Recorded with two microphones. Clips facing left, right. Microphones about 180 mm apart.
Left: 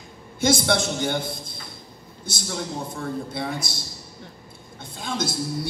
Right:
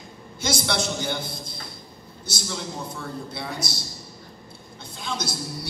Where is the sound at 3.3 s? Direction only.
50° left (ahead or behind).